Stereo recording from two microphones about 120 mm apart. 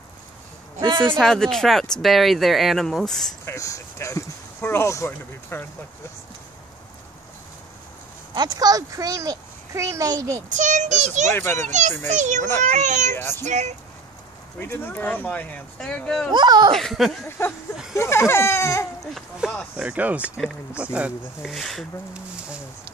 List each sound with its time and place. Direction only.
1.1 s speech: 5° left (ahead or behind)
3.4 s speech: 25° left (ahead or behind)
8.4 s a child's voice: 30° right (ahead or behind)
10.5 s a child's voice: 90° right
11.3 s speech: 20° left (ahead or behind)
12.1 s a child's voice: 80° right
13.1 s speech: 20° left (ahead or behind)
13.5 s a child's voice: 80° right
14.6 s speech: 15° left (ahead or behind)
16.3 s speech: 35° right (ahead or behind)
16.7 s speech: centre (ahead or behind)
17.4 s speech: 20° left (ahead or behind)
19.1 s speech: centre (ahead or behind)